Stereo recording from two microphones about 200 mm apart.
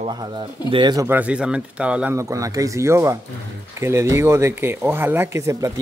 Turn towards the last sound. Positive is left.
turn(degrees=-15)  # may be behind; listen again after turning